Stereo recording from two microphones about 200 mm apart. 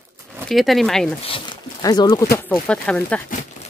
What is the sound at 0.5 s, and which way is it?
Speech, centre (ahead or behind).